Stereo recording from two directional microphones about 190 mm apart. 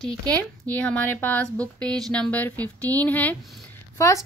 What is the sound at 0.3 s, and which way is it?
A woman's voice, 5° left (ahead or behind).